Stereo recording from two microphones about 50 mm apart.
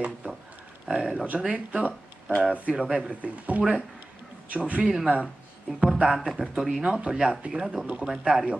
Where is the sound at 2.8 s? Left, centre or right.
Centre.